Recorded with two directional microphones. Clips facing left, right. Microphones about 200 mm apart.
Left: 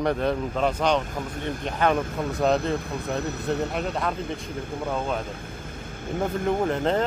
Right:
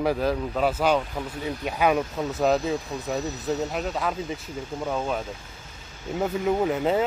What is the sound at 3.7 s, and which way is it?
Speech, centre (ahead or behind).